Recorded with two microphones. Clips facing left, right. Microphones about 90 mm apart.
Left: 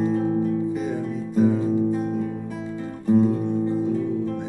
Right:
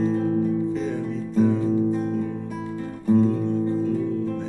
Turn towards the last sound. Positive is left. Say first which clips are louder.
# even
turn(degrees=15)  # may be behind; listen again after turning